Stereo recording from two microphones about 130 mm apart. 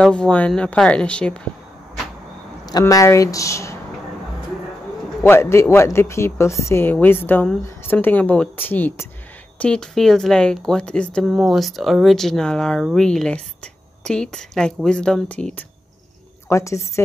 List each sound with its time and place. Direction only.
0.0 s speech: 5° left (ahead or behind)
2.8 s a woman's voice: 25° left (ahead or behind)
5.2 s a woman's voice: 20° left (ahead or behind)
16.4 s a woman's voice: 25° left (ahead or behind)